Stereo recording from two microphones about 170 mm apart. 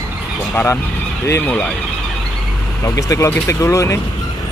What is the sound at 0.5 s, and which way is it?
Speech, 10° left (ahead or behind).